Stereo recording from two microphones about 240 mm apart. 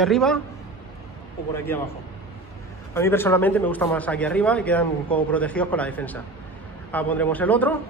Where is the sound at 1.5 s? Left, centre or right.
Centre.